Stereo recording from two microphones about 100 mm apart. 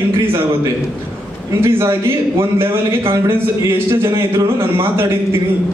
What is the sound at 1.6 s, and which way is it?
A man's voice, 25° right (ahead or behind).